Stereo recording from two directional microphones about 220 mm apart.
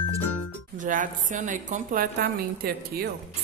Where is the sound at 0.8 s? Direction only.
35° right (ahead or behind).